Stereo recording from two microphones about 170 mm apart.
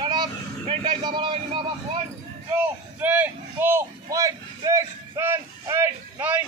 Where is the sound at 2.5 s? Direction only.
10° right (ahead or behind).